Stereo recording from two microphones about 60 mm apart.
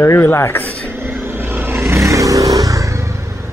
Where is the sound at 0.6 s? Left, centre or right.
Centre.